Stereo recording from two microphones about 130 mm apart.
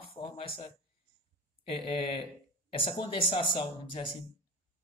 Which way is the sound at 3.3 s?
45° left (ahead or behind).